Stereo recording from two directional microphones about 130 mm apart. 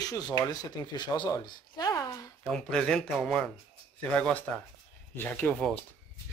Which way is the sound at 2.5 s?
5° left (ahead or behind).